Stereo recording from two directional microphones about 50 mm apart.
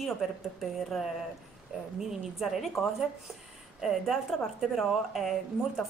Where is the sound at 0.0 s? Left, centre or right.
Centre.